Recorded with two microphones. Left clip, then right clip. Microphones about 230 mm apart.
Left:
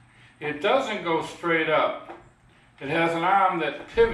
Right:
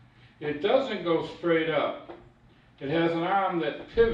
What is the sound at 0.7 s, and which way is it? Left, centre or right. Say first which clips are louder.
Speech: left 2 dB; centre.